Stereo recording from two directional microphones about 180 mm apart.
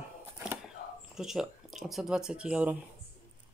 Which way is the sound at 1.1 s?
Centre (ahead or behind).